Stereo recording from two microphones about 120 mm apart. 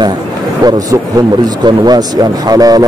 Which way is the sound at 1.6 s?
35° right (ahead or behind).